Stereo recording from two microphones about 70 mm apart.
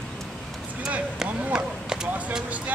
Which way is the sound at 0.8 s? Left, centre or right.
Centre.